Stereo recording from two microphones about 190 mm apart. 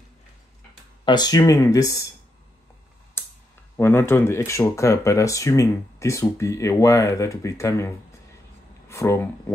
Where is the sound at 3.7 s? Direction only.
15° left (ahead or behind).